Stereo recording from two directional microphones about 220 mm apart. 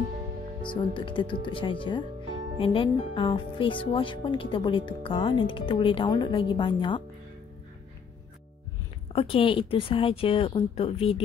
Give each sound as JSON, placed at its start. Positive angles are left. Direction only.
{"t": 0.6, "sound": "speech", "side_deg": 20}
{"t": 9.1, "sound": "speech", "side_deg": 25}